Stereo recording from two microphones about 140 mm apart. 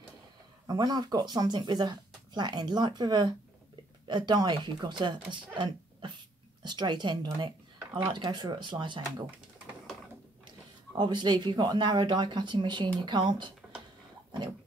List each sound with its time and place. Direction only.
0.7 s speech: 30° right (ahead or behind)
11.0 s speech: 35° right (ahead or behind)